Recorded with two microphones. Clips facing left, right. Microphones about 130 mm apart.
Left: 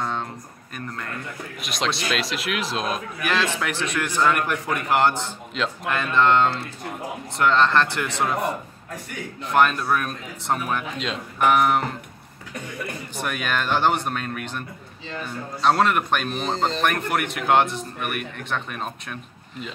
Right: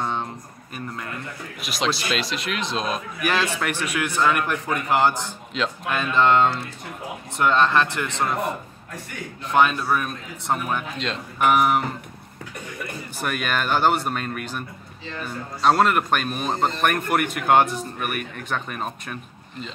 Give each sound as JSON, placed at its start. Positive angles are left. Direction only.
{"t": 0.0, "sound": "a sound", "side_deg": -15}
{"t": 0.7, "sound": "a man's voice", "side_deg": -10}
{"t": 9.5, "sound": "a man's voice", "side_deg": 0}
{"t": 13.2, "sound": "a man's voice", "side_deg": 0}
{"t": 15.6, "sound": "a man's voice", "side_deg": 0}